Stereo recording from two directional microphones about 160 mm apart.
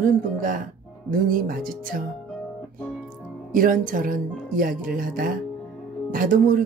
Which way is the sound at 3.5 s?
60° right (ahead or behind).